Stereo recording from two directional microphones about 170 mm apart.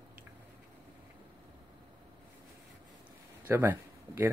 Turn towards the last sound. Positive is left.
turn(degrees=-10)  # may be behind; listen again after turning